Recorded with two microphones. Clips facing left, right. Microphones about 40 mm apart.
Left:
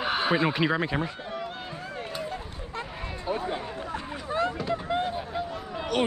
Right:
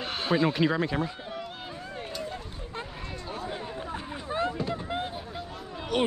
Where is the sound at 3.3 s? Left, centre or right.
Left.